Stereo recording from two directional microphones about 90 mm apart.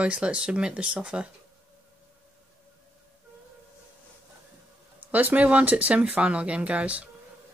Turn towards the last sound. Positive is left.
turn(degrees=-15)  # may be behind; listen again after turning